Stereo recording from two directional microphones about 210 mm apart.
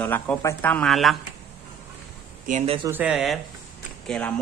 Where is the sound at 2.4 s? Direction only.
30° right (ahead or behind).